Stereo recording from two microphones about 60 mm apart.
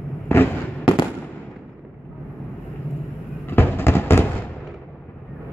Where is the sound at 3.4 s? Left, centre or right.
Left.